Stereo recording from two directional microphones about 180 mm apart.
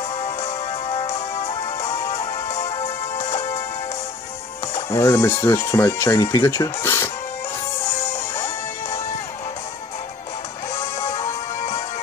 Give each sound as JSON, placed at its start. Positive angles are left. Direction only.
{"t": 0.2, "sound": "music", "side_deg": 35}
{"t": 2.8, "sound": "music", "side_deg": 35}
{"t": 4.9, "sound": "speech", "side_deg": 15}
{"t": 10.8, "sound": "music", "side_deg": 15}